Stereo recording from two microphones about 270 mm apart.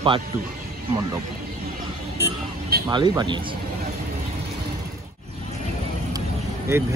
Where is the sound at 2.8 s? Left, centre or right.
Centre.